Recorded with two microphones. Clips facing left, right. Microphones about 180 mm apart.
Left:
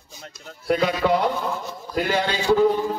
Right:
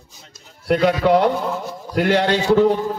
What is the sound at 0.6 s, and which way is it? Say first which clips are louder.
Speech: right 4 dB; 70° right (ahead or behind).